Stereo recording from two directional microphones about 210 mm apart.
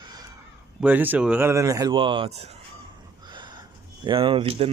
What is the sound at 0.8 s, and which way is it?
Speech, 10° right (ahead or behind).